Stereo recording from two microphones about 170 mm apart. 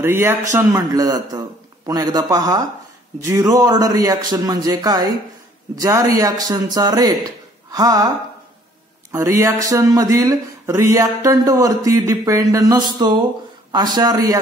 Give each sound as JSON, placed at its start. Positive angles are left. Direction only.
{"t": 0.0, "sound": "speech", "side_deg": -15}
{"t": 9.1, "sound": "speech", "side_deg": -20}